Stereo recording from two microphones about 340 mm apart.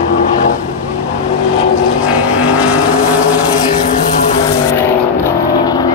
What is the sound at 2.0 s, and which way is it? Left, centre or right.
Vehicle, centre.